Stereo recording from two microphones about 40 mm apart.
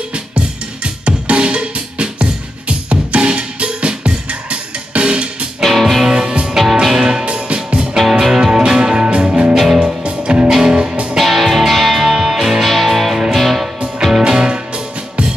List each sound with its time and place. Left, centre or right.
0.8 s music: right
5.6 s music: centre
6.0 s music: right
6.5 s music: centre
7.4 s music: right
8.0 s music: centre
8.4 s music: centre
11.1 s music: centre
12.6 s music: centre
14.2 s music: right